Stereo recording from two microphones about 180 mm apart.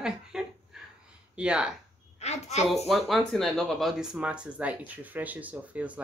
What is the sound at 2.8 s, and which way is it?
A woman's voice, centre (ahead or behind).